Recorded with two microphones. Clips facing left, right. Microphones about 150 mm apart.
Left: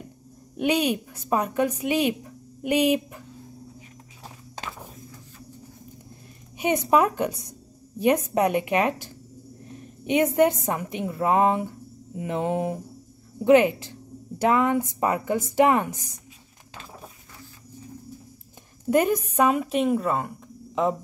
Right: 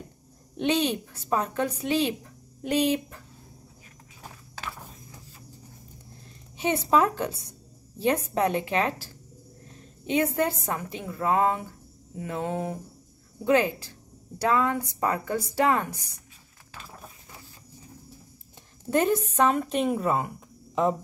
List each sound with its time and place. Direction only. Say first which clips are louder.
0.6 s a woman's voice: left 2 dB; 10° left (ahead or behind)
6.6 s a woman's voice: left 2 dB; 15° left (ahead or behind)
18.9 s a woman's voice: left 2 dB; 10° left (ahead or behind)